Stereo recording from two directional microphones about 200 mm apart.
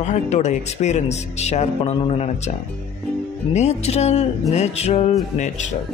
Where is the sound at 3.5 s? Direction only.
35° left (ahead or behind).